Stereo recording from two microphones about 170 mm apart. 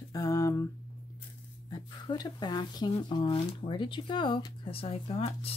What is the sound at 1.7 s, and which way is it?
Speech, 25° left (ahead or behind).